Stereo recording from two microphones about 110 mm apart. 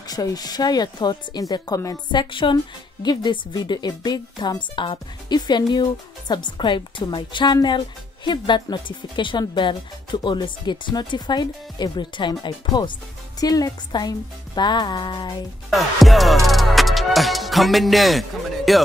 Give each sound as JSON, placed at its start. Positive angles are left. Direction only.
{"t": 0.1, "sound": "speech", "side_deg": 35}
{"t": 15.7, "sound": "music", "side_deg": 0}
{"t": 18.7, "sound": "speech", "side_deg": 0}